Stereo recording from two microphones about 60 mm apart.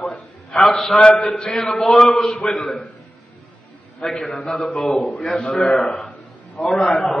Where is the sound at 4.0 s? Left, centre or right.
Centre.